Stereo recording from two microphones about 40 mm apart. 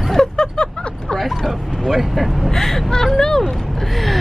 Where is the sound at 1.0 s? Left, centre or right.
Centre.